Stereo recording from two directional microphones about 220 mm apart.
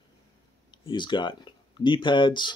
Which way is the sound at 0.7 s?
20° left (ahead or behind).